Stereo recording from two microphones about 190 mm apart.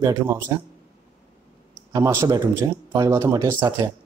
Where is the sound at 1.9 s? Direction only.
15° right (ahead or behind).